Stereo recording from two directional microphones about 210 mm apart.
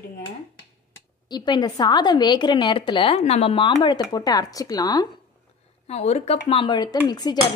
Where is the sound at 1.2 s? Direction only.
20° left (ahead or behind).